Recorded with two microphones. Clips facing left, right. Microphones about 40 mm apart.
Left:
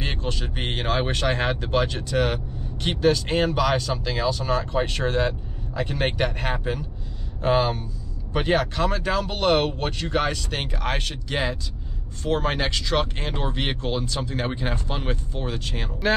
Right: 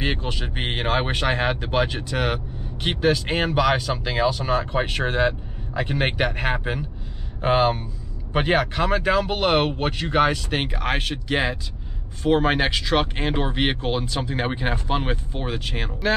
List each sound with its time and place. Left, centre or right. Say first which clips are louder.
0.0 s speech: right 3 dB; centre